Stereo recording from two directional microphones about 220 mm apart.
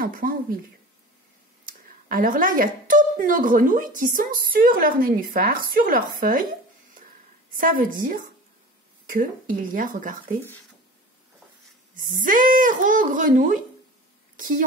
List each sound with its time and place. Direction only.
0.0 s a woman's voice: 40° right (ahead or behind)
1.7 s a woman's voice: 40° right (ahead or behind)
7.5 s a woman's voice: 40° right (ahead or behind)
11.9 s a woman's voice: 40° right (ahead or behind)